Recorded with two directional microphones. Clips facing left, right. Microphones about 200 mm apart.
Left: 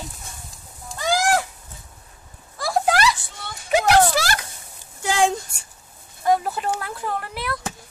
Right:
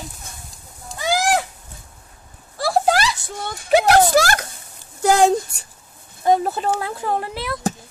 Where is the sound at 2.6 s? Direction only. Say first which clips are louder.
Right 2 dB; 35° right (ahead or behind).